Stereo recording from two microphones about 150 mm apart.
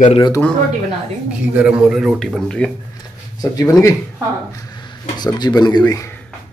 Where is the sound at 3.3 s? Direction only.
25° left (ahead or behind).